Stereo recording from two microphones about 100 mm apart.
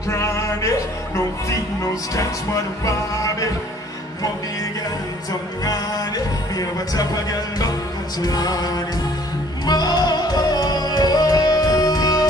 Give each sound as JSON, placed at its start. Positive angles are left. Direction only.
{"t": 0.1, "sound": "speech", "side_deg": 30}
{"t": 5.6, "sound": "speech", "side_deg": 40}
{"t": 9.7, "sound": "music", "side_deg": 45}